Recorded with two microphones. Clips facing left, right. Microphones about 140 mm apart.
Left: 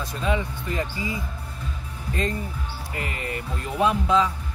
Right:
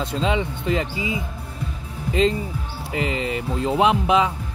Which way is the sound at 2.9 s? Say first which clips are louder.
Right 8 dB; 90° right.